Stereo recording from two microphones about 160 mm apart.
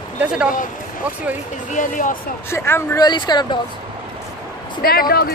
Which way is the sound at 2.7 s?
15° left (ahead or behind).